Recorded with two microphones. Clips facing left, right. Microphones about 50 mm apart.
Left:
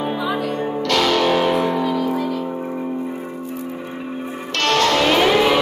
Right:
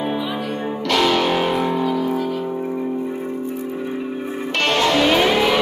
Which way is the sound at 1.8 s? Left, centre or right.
Left.